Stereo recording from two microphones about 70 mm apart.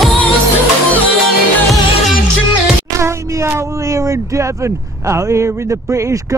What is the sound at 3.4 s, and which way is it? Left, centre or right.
Speech, right.